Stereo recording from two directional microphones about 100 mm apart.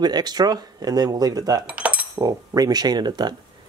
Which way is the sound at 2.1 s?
35° right (ahead or behind).